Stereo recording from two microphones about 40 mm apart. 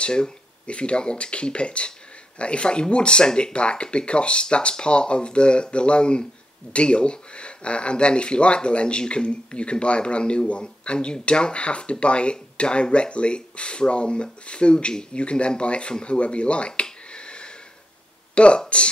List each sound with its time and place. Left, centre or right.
0.0 s speech: left
16.8 s a sound: left
18.3 s speech: left